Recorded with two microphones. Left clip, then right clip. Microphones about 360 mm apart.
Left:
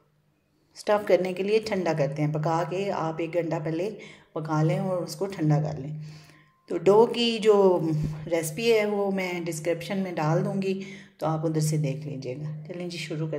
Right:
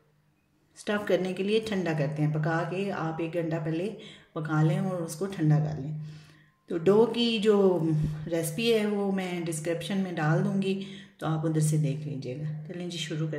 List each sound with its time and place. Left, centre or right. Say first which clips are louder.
0.8 s speech: left 5 dB; centre